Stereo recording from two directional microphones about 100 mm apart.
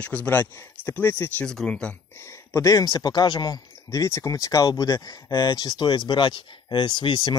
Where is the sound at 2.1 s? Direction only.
30° left (ahead or behind).